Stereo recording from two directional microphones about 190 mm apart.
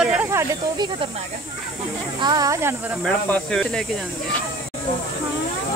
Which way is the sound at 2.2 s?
20° right (ahead or behind).